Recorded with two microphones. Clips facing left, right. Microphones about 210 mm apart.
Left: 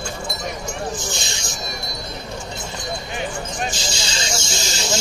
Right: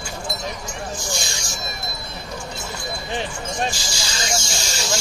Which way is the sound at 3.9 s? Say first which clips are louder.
Even; 25° left (ahead or behind).